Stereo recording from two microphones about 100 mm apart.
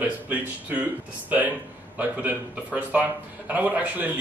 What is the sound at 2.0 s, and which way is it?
A man's voice, 15° right (ahead or behind).